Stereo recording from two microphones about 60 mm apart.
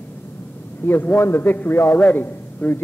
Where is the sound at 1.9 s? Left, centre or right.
Left.